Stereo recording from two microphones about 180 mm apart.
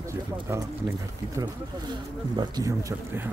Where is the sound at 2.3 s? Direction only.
25° right (ahead or behind).